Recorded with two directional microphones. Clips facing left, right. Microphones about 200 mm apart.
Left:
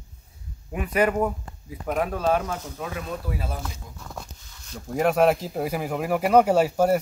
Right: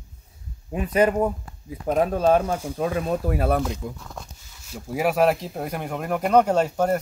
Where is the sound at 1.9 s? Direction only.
30° right (ahead or behind).